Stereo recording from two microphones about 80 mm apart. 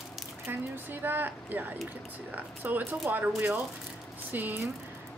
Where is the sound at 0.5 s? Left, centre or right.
Right.